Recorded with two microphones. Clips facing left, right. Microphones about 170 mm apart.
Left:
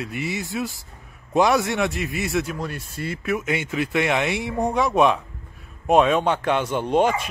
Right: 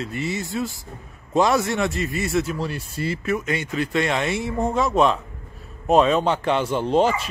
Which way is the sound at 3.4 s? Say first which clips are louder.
Even; 20° left (ahead or behind).